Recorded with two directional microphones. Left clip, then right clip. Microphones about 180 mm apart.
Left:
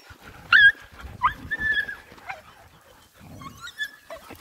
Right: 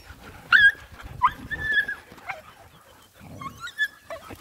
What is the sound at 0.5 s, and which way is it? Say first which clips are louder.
Dog: left 1 dB; 60° right (ahead or behind).